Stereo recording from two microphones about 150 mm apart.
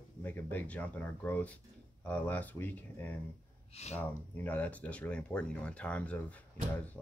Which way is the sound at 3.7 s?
45° left (ahead or behind).